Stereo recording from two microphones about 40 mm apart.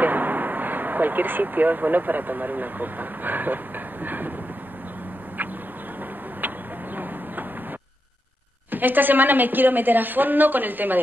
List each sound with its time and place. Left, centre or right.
0.0 s a woman's voice: right
8.7 s a woman's voice: right